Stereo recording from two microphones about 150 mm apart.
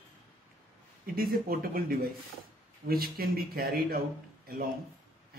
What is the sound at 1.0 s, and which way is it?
Speech, 80° right.